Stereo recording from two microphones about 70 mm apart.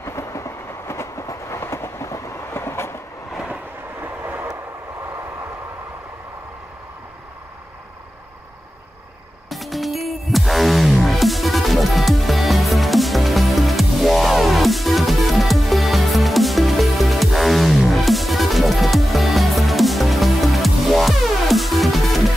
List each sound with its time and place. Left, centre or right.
0.0 s train: left
4.0 s vehicle: right
9.5 s music: centre